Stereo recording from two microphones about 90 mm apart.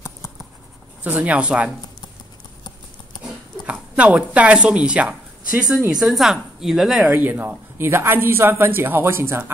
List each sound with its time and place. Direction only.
1.0 s speech: 15° right (ahead or behind)
3.6 s a woman's voice: 15° right (ahead or behind)
7.1 s speech: 20° right (ahead or behind)